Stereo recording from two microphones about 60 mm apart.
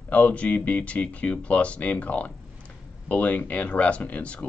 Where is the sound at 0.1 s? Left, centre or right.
Left.